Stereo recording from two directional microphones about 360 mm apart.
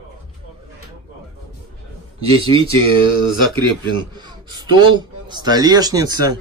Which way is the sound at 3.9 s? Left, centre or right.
Centre.